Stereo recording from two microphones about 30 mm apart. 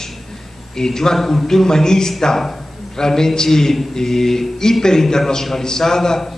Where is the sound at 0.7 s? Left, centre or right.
Centre.